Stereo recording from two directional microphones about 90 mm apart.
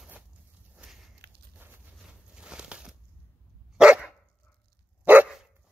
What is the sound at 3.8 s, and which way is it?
Dog, 10° right (ahead or behind).